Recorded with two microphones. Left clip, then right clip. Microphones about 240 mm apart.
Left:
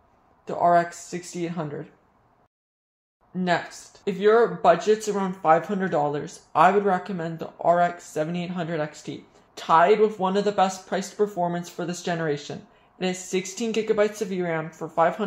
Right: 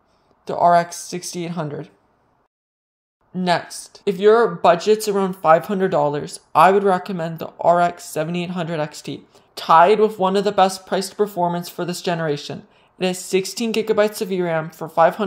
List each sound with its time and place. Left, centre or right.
0.5 s speech: right
3.3 s speech: right